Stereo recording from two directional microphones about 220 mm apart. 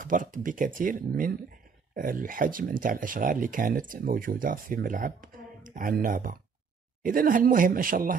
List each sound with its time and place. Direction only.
0.0 s speech: 35° right (ahead or behind)